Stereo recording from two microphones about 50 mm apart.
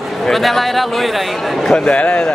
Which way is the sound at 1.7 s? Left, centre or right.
Left.